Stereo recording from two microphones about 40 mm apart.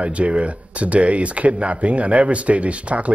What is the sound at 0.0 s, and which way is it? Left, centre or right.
A man's voice, right.